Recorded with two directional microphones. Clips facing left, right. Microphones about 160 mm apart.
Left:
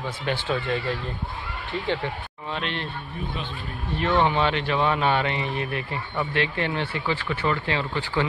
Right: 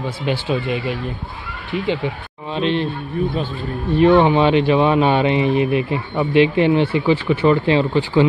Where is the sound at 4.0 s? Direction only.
20° right (ahead or behind).